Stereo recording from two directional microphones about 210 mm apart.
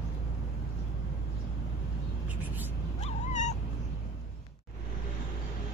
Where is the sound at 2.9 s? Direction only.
35° left (ahead or behind).